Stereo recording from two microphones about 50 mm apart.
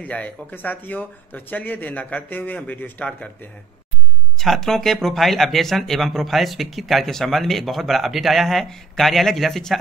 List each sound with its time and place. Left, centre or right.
0.0 s speech: left
4.4 s speech: centre